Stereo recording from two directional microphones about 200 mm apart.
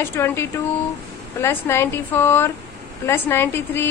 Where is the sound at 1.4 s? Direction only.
15° left (ahead or behind).